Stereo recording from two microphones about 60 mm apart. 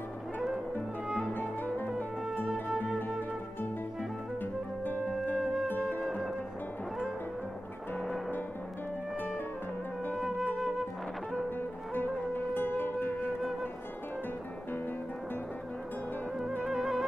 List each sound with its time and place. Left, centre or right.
1.0 s music: centre
1.3 s music: left
5.7 s music: left
10.1 s music: centre
11.9 s music: left
16.6 s music: centre